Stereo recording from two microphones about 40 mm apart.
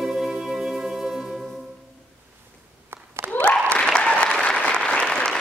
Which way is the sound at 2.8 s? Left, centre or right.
Right.